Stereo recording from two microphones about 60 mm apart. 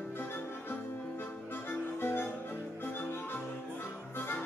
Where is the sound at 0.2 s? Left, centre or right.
Left.